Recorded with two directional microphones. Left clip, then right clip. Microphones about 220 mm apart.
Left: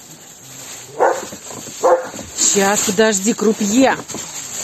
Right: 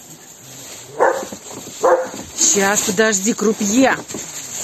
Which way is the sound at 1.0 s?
5° right (ahead or behind).